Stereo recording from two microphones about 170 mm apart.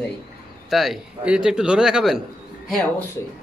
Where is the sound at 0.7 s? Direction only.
Centre (ahead or behind).